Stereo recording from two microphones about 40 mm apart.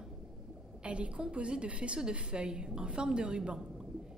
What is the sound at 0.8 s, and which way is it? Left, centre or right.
A woman's voice, right.